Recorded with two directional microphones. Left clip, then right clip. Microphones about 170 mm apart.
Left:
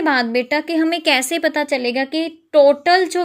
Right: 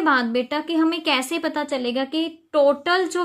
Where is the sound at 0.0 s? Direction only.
20° left (ahead or behind).